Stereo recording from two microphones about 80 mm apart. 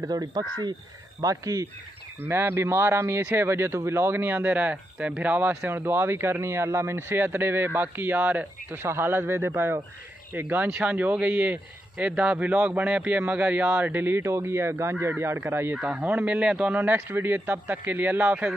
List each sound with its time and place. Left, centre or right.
0.1 s speech: right
2.1 s speech: right
5.5 s speech: right
5.8 s speech: right
15.7 s speech: centre